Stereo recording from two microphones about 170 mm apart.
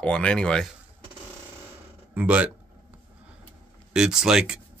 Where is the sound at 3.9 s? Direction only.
5° right (ahead or behind).